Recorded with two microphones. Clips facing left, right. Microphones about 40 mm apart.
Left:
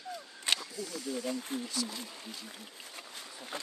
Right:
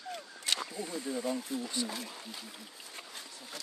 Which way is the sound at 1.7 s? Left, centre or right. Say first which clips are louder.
Right 1 dB; right.